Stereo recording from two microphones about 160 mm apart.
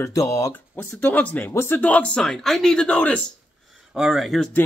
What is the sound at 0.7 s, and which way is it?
Speech, 10° left (ahead or behind).